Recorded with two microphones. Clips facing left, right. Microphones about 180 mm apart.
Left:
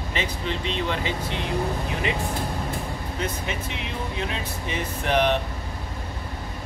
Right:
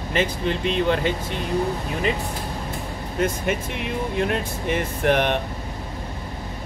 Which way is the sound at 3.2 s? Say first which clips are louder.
Right 8 dB; 50° right (ahead or behind).